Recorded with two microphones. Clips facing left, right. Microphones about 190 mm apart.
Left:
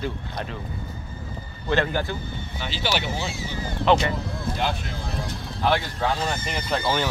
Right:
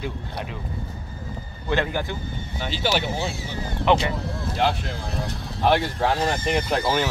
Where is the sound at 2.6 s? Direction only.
50° right (ahead or behind).